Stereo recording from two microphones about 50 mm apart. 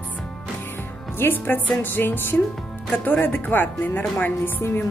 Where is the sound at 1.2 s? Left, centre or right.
Left.